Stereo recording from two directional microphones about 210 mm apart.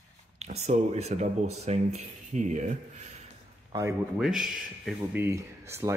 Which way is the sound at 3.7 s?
15° right (ahead or behind).